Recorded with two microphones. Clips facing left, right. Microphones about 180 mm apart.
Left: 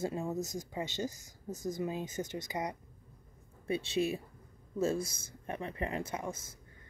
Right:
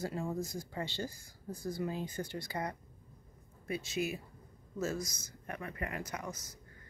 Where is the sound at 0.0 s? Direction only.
20° left (ahead or behind).